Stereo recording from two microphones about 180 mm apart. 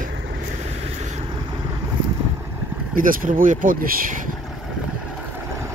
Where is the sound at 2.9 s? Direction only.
50° right (ahead or behind).